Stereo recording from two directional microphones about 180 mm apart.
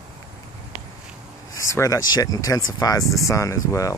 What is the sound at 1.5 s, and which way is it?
Speech, 15° left (ahead or behind).